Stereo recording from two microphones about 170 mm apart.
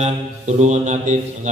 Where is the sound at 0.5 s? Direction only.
45° right (ahead or behind).